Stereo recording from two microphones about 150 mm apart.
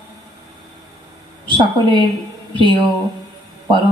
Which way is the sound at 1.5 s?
35° right (ahead or behind).